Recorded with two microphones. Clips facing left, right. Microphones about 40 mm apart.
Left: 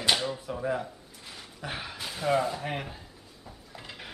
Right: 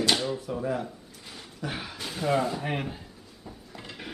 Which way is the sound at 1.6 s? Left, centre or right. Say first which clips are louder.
Right 2 dB; centre.